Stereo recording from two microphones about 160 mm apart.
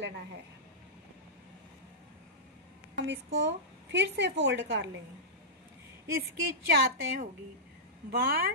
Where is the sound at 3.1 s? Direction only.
90° right.